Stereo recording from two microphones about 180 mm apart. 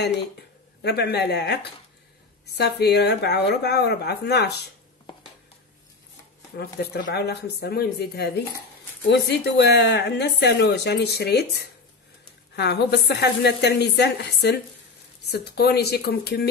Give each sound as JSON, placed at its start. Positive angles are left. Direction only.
{"t": 0.8, "sound": "a woman's voice", "side_deg": 65}
{"t": 6.8, "sound": "a woman's voice", "side_deg": 65}